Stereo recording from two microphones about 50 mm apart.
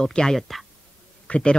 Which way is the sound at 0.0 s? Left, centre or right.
Centre.